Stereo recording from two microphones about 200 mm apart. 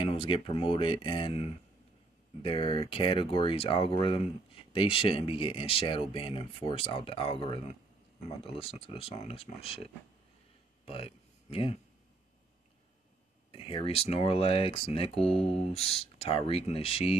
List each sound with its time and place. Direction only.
0.0 s speech: 25° left (ahead or behind)
10.9 s speech: 30° left (ahead or behind)
13.5 s speech: 25° left (ahead or behind)